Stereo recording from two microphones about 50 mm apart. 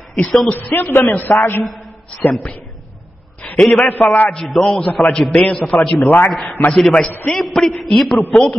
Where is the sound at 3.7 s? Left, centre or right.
Left.